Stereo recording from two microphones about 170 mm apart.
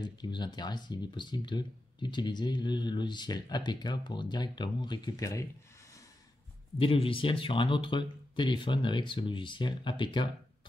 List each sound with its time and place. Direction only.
0.0 s speech: 25° left (ahead or behind)
6.8 s speech: 30° left (ahead or behind)